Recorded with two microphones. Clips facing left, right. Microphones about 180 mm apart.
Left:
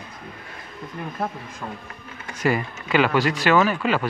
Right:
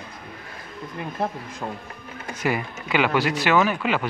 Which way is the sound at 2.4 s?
10° right (ahead or behind).